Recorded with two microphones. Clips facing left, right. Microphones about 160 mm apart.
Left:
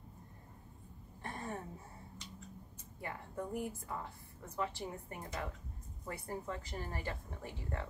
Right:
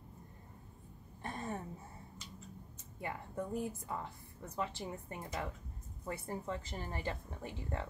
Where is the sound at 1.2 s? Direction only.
20° right (ahead or behind).